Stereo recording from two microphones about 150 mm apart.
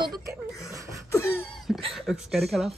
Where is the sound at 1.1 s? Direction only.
15° left (ahead or behind).